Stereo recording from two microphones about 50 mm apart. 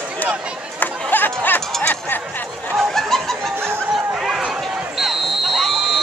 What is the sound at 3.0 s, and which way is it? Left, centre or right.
Snicker, centre.